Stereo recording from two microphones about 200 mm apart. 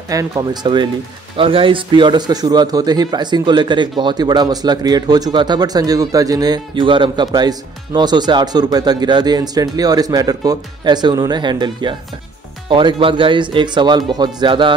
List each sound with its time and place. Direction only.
0.1 s speech: 15° right (ahead or behind)